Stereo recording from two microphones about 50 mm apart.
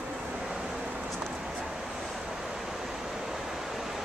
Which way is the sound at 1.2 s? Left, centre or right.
Centre.